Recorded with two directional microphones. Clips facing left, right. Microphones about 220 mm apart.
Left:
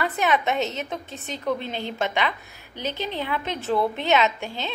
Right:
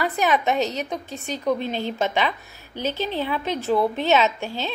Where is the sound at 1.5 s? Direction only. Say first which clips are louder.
Right 3 dB; 15° right (ahead or behind).